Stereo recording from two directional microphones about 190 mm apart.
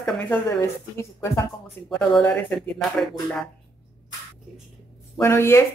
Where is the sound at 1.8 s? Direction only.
10° left (ahead or behind).